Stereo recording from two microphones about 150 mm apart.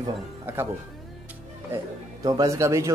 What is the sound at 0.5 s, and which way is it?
Speech, 15° right (ahead or behind).